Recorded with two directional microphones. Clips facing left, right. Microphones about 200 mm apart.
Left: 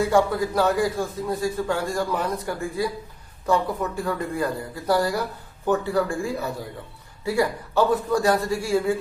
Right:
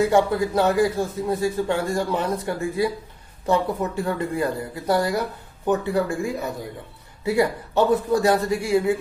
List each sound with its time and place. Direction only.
0.0 s a man's voice: 25° right (ahead or behind)